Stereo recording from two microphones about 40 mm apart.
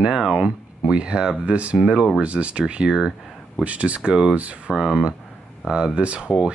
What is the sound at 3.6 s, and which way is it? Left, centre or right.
Speech, right.